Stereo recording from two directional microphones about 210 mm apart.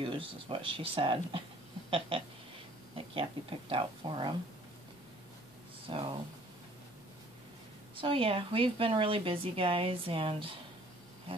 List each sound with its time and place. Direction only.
0.0 s speech: 25° right (ahead or behind)
5.9 s speech: 25° right (ahead or behind)
7.9 s speech: 25° right (ahead or behind)